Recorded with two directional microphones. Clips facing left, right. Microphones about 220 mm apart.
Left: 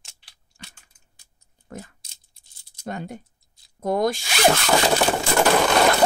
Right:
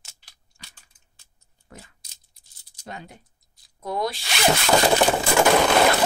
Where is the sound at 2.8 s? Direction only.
50° left (ahead or behind).